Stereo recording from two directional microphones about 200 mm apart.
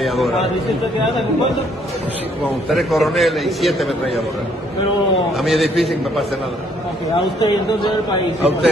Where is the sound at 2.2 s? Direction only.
5° right (ahead or behind).